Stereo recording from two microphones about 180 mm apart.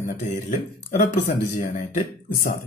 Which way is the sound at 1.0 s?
45° left (ahead or behind).